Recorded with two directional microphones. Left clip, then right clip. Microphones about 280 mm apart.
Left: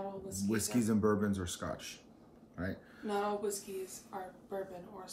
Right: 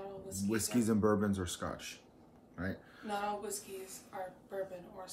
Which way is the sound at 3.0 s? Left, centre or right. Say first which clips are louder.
Left 3 dB; centre.